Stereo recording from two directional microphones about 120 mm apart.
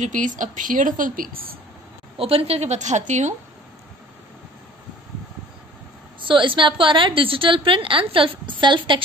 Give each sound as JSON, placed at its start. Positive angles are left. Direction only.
{"t": 0.0, "sound": "speech", "side_deg": -90}
{"t": 2.1, "sound": "a woman's voice", "side_deg": -50}
{"t": 6.2, "sound": "a woman's voice", "side_deg": -45}